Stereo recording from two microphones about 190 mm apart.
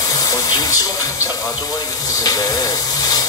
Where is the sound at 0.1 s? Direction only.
20° left (ahead or behind).